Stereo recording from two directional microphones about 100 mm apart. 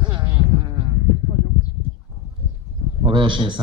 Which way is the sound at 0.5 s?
50° right (ahead or behind).